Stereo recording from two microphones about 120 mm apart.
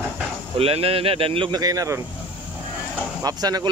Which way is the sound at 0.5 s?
55° right (ahead or behind).